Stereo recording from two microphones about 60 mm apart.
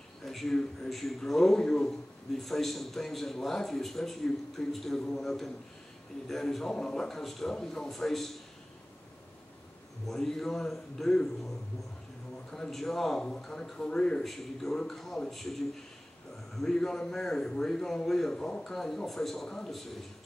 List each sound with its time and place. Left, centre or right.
0.2 s a man's voice: centre
10.0 s a man's voice: centre
14.2 s a man's voice: centre